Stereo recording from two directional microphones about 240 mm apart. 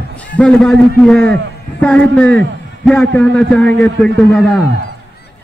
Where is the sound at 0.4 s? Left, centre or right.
Centre.